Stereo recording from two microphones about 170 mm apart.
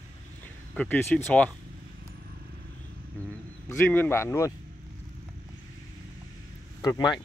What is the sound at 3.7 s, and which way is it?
Speech, 15° left (ahead or behind).